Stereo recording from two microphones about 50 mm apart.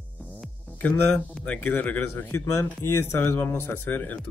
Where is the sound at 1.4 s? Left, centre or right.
Left.